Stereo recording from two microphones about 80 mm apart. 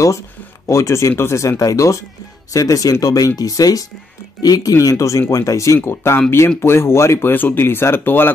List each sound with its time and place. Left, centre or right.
0.7 s speech: left
5.8 s speech: left